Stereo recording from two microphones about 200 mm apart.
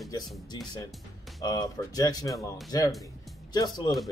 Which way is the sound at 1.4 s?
20° left (ahead or behind).